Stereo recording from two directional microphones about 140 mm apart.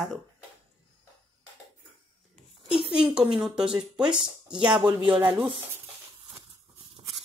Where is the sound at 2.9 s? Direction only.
5° right (ahead or behind).